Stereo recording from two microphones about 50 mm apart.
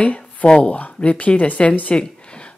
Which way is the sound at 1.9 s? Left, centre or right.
Centre.